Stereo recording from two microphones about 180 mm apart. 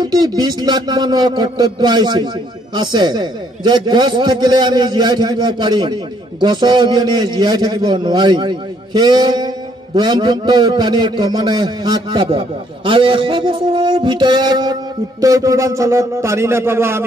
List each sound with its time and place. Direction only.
0.0 s a man's voice: 25° right (ahead or behind)